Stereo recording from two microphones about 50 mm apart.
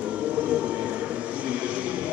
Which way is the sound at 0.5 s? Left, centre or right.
Right.